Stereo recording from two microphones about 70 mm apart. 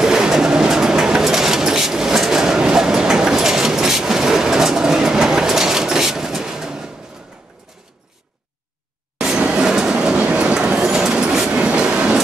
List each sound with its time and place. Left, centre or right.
0.0 s bird: centre
9.5 s train: centre